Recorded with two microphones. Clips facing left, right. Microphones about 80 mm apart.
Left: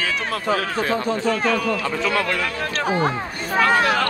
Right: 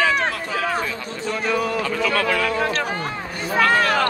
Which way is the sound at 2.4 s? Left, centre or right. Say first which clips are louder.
Right 5 dB; centre.